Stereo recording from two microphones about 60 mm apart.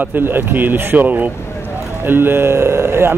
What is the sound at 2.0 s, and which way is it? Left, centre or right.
Speech, right.